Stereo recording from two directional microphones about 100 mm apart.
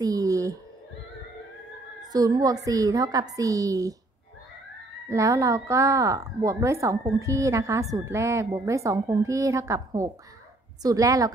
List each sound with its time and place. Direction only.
0.0 s a sound: 35° right (ahead or behind)
2.1 s a woman's voice: 40° right (ahead or behind)
5.1 s a woman's voice: 30° right (ahead or behind)